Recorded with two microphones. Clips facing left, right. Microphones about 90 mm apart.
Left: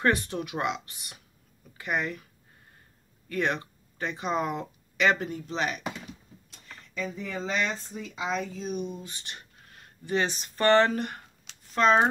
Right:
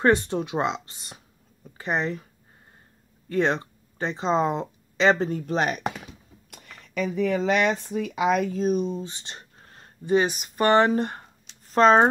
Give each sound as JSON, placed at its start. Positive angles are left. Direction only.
{"t": 0.0, "sound": "speech", "side_deg": -25}
{"t": 3.3, "sound": "speech", "side_deg": -25}
{"t": 5.3, "sound": "speech", "side_deg": -45}
{"t": 6.5, "sound": "speech", "side_deg": -70}
{"t": 8.9, "sound": "a sound", "side_deg": -25}
{"t": 10.1, "sound": "speech", "side_deg": -10}
{"t": 11.7, "sound": "speech", "side_deg": -40}